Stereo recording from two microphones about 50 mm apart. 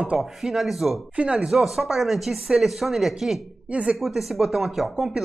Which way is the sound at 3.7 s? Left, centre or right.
Right.